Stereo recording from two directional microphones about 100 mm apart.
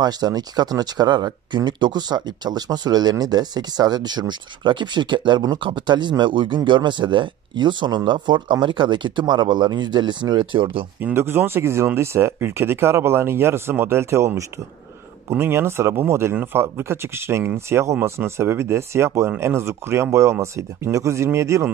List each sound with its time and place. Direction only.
0.0 s speech: 40° right (ahead or behind); by 10.9 s 60° right (ahead or behind)
11.0 s speech: 20° right (ahead or behind)